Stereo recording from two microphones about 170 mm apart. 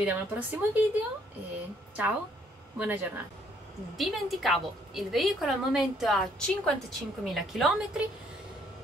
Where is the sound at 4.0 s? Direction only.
Centre (ahead or behind).